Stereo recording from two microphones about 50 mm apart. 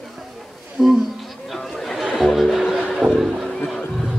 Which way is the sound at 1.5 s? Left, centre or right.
Centre.